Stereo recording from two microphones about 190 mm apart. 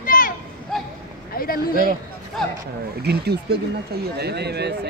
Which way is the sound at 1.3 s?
50° left (ahead or behind).